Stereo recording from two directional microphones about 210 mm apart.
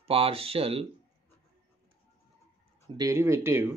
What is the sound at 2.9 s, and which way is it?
Speech, 15° right (ahead or behind).